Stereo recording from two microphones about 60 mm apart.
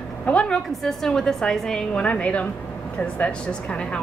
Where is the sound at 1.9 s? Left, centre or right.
Left.